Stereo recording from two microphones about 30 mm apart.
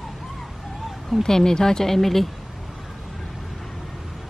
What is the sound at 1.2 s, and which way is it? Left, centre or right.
Speech, centre.